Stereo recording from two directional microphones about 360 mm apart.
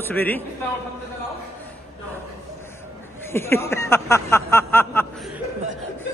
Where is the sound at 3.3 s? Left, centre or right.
Centre.